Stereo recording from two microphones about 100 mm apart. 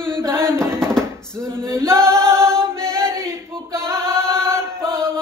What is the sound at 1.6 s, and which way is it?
Chant, 25° right (ahead or behind).